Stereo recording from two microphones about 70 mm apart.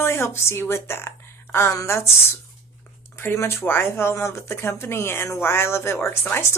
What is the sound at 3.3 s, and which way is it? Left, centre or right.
Speech, left.